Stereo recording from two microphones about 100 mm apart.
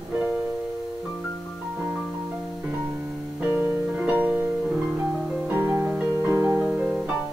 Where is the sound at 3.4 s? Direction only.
20° right (ahead or behind).